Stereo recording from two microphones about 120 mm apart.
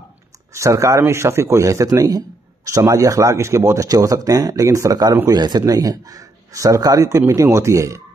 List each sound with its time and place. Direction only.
0.5 s a man's voice: 25° right (ahead or behind)